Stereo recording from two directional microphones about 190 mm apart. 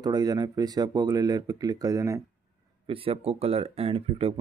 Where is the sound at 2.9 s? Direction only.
30° right (ahead or behind).